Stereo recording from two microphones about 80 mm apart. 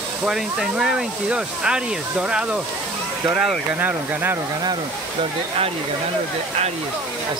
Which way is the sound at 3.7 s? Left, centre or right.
Right.